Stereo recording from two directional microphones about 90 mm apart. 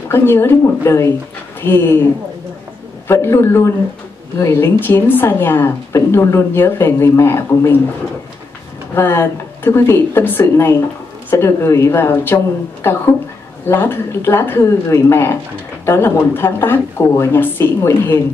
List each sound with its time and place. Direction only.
0.1 s speech: 25° left (ahead or behind)
3.1 s speech: 30° left (ahead or behind)
8.9 s speech: 25° left (ahead or behind)
13.7 s speech: 25° left (ahead or behind)